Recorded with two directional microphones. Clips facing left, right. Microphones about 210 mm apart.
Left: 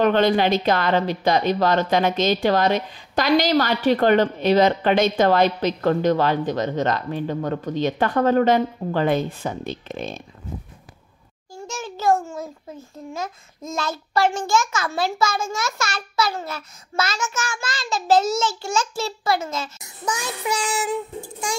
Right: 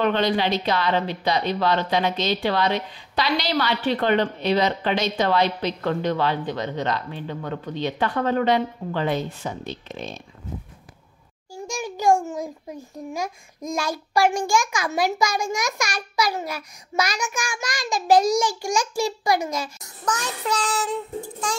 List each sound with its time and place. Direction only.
0.0 s speech: 50° left (ahead or behind)
11.5 s a child's voice: 10° right (ahead or behind)
19.8 s child singing: 10° left (ahead or behind)